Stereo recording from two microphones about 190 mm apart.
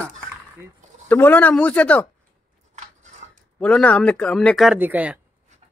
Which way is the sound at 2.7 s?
40° right (ahead or behind).